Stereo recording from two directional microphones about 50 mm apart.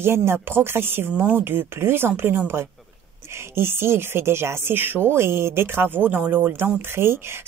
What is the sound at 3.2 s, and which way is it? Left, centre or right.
Speech, right.